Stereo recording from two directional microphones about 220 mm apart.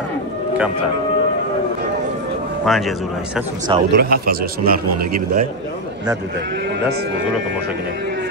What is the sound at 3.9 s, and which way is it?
Speech, 45° right (ahead or behind).